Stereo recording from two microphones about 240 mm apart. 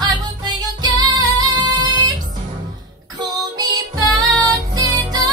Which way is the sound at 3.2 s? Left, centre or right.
Centre.